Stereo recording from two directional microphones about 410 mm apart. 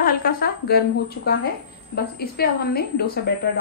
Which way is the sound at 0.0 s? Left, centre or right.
Left.